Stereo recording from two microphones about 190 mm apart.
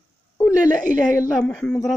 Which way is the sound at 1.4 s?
5° left (ahead or behind).